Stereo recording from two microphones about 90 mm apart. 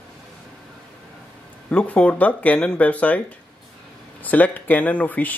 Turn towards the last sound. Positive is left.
turn(degrees=20)  # may be behind; listen again after turning